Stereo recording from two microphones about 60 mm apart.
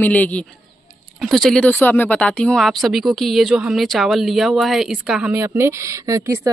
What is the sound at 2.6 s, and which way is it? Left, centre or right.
A woman's voice, centre.